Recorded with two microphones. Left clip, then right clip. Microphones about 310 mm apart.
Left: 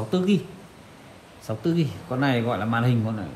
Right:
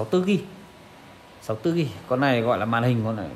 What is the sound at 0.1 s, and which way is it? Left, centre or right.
Speech, right.